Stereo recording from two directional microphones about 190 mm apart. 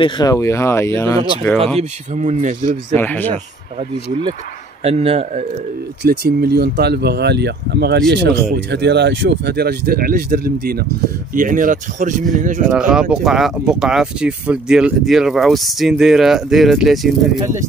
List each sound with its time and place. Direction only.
0.0 s speech: 20° left (ahead or behind)
1.8 s speech: 40° right (ahead or behind)
3.0 s speech: 10° left (ahead or behind)
4.8 s speech: 30° right (ahead or behind)
6.0 s speech: 55° right (ahead or behind)
12.6 s speech: 5° right (ahead or behind)